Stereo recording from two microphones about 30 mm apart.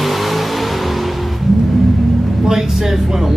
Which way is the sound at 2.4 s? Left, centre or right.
Centre.